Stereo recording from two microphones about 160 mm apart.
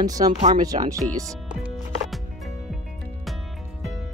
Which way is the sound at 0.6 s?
25° right (ahead or behind).